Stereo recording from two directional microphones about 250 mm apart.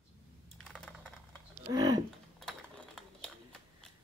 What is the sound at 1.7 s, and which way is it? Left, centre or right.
Speech, centre.